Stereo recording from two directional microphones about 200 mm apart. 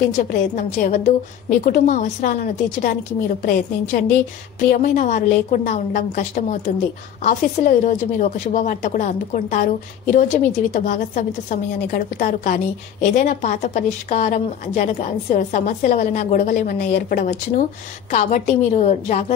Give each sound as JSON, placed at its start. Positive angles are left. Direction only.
{"t": 0.2, "sound": "a woman's voice", "side_deg": 45}